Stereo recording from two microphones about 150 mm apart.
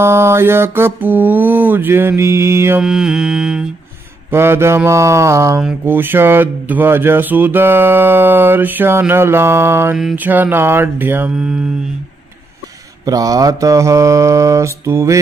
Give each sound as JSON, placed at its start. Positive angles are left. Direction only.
{"t": 0.0, "sound": "speech", "side_deg": -15}
{"t": 2.8, "sound": "mantra", "side_deg": -5}
{"t": 4.3, "sound": "speech", "side_deg": -15}
{"t": 13.0, "sound": "mantra", "side_deg": -25}